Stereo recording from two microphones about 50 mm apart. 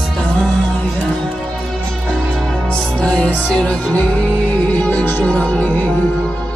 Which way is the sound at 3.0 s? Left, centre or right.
Left.